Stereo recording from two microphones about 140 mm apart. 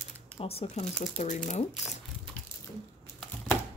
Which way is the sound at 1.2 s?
55° left (ahead or behind).